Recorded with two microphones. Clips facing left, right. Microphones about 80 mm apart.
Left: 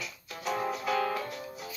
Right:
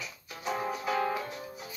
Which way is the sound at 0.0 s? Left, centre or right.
Centre.